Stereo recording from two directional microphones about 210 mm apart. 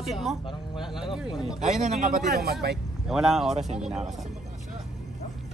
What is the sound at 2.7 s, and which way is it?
A man's voice, centre (ahead or behind).